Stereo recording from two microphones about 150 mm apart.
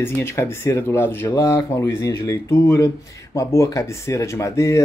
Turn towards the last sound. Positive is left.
turn(degrees=20)  # may be behind; listen again after turning